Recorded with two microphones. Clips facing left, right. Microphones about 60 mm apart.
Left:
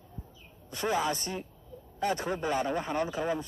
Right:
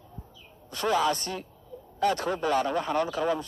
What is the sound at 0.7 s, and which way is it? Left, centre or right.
A man's voice, centre.